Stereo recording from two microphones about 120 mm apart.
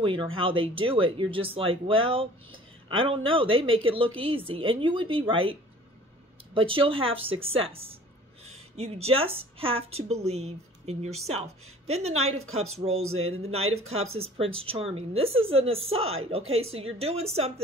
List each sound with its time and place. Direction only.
0.0 s speech: 45° right (ahead or behind)